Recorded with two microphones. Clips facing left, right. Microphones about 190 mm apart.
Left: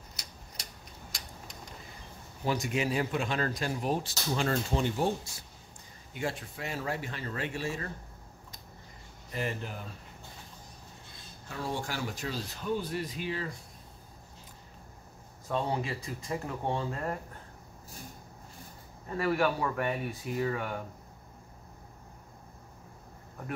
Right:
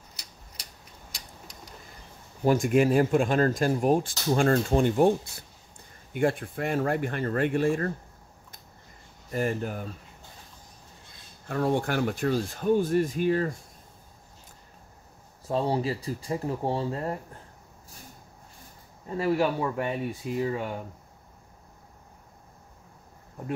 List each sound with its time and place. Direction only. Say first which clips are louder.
2.4 s speech: right 9 dB; 50° right (ahead or behind)
9.3 s speech: right 7 dB; 45° right (ahead or behind)
11.4 s speech: right 10 dB; 55° right (ahead or behind)
15.4 s speech: right 5 dB; 30° right (ahead or behind)
19.0 s speech: right 3 dB; 25° right (ahead or behind)